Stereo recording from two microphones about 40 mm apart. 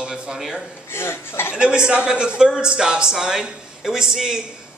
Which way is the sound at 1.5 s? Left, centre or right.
Right.